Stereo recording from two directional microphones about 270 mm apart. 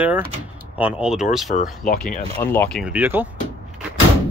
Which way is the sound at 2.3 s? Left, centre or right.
Centre.